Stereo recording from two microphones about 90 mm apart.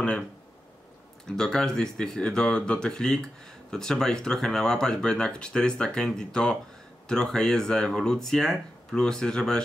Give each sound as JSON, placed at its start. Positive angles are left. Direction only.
{"t": 1.2, "sound": "speech", "side_deg": 5}